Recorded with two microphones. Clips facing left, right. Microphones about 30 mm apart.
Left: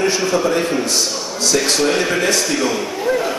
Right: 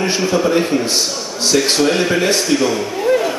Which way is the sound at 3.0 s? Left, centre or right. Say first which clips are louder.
Right 4 dB; centre.